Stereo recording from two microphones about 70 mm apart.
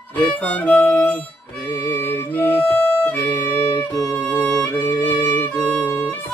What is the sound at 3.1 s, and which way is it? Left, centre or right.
Violin, left.